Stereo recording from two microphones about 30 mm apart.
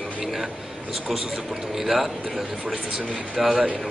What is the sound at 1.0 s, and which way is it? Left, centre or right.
A man's voice, centre.